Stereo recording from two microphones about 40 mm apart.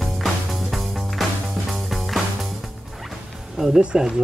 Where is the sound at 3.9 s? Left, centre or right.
Right.